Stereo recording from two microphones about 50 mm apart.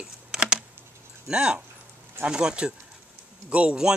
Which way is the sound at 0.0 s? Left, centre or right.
Centre.